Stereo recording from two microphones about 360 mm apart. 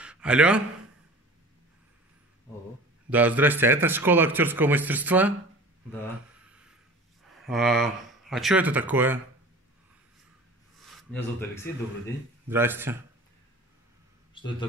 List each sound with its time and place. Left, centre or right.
0.0 s a sound: centre
3.1 s speech: centre
6.4 s a sound: centre
7.3 s speech: centre
10.8 s speech: centre
12.4 s speech: centre
14.3 s a man's voice: centre